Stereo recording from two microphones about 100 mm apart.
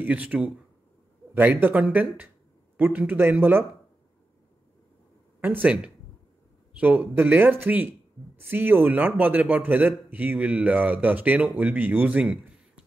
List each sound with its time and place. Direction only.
0.0 s a man's voice: 15° right (ahead or behind)
5.4 s speech: 20° right (ahead or behind)
6.8 s a man's voice: 15° right (ahead or behind)